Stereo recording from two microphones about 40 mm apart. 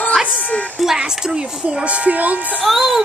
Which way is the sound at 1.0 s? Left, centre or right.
Centre.